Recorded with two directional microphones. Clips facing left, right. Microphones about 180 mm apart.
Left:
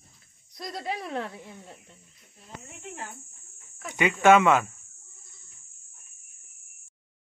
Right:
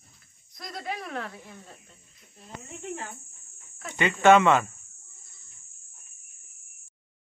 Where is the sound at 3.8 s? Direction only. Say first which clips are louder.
Even; 10° left (ahead or behind).